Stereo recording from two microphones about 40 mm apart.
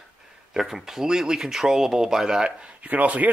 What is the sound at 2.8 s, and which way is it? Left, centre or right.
Speech, right.